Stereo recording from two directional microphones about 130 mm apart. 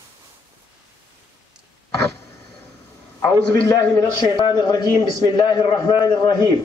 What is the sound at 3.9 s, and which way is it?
A man's voice, 30° left (ahead or behind).